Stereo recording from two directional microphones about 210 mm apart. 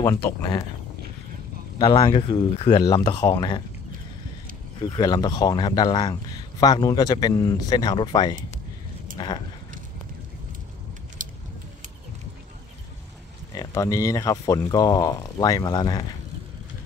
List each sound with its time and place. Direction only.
0.0 s speech: 15° left (ahead or behind)
1.8 s speech: 20° left (ahead or behind)
4.7 s speech: 20° left (ahead or behind)
11.2 s keys jangling: 40° right (ahead or behind)
13.6 s speech: 15° left (ahead or behind)